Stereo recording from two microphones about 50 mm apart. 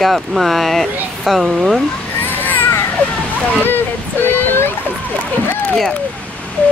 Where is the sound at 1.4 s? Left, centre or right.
Centre.